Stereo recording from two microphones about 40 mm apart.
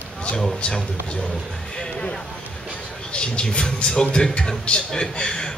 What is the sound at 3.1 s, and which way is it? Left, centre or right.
A man's voice, left.